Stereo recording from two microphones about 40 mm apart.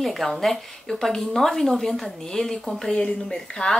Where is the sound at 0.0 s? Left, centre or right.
Centre.